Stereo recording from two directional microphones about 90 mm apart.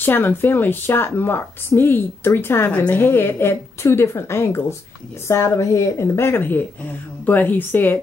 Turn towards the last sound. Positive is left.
turn(degrees=20)  # may be behind; listen again after turning